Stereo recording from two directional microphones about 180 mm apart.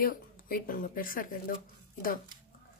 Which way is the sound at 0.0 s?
55° left (ahead or behind).